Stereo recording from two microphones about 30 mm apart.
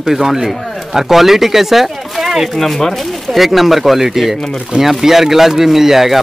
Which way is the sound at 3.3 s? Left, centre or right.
Centre.